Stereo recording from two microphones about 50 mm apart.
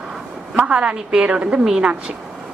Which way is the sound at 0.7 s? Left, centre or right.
Right.